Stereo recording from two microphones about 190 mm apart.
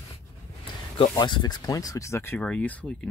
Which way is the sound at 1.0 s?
25° left (ahead or behind).